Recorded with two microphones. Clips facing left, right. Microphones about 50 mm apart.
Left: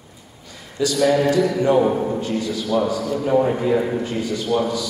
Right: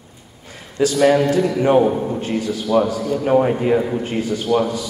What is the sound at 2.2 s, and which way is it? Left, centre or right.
A man's voice, right.